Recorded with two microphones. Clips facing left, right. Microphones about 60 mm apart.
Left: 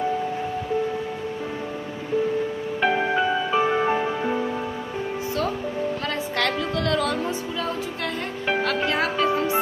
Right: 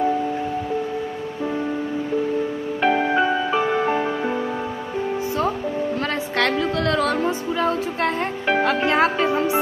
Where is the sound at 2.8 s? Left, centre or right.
Centre.